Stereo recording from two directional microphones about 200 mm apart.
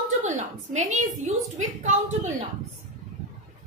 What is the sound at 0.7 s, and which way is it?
Speech, 40° right (ahead or behind).